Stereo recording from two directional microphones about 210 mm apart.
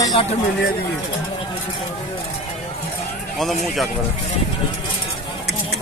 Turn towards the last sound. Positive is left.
turn(degrees=0)  # may be behind; listen again after turning